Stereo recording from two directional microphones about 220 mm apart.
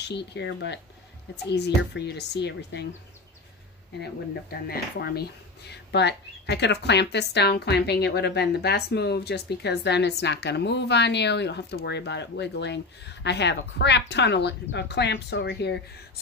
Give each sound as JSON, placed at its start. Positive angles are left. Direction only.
{"t": 0.0, "sound": "speech", "side_deg": 50}
{"t": 4.0, "sound": "speech", "side_deg": 45}